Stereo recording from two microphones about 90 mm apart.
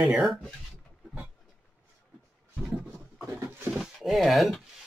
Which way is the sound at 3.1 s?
25° right (ahead or behind).